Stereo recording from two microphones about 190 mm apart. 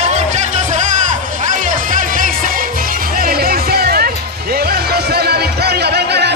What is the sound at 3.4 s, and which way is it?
Music, 55° right (ahead or behind).